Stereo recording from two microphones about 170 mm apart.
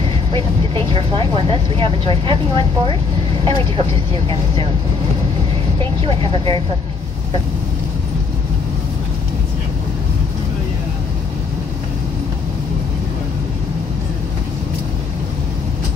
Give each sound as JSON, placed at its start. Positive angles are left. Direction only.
{"t": 0.3, "sound": "speech", "side_deg": -30}
{"t": 6.3, "sound": "speech", "side_deg": -30}